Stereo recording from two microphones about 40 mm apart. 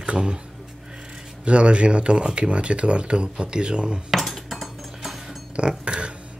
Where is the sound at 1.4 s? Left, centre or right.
Right.